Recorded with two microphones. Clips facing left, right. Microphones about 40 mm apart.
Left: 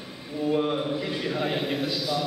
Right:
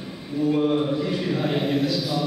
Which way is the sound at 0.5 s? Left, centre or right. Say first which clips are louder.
Right 3 dB; centre.